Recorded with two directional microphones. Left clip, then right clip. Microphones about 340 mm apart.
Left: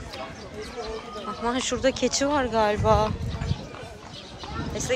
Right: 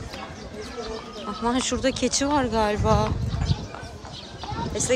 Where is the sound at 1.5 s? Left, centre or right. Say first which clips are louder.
Even; centre.